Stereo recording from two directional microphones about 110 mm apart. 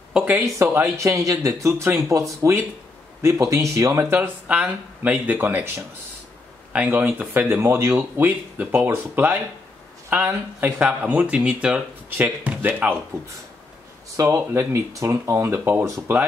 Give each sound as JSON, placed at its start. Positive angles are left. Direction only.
{"t": 0.1, "sound": "speech", "side_deg": -15}
{"t": 0.6, "sound": "speech", "side_deg": -25}
{"t": 6.7, "sound": "speech", "side_deg": -15}
{"t": 14.1, "sound": "speech", "side_deg": -30}